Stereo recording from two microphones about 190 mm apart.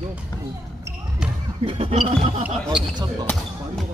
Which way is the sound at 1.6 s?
25° right (ahead or behind).